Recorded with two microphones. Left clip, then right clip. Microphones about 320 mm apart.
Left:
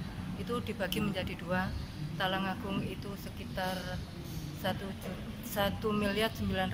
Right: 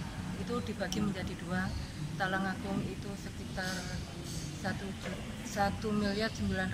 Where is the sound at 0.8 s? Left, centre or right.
Centre.